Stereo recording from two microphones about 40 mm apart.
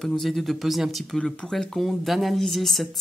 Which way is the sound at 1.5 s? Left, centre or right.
Centre.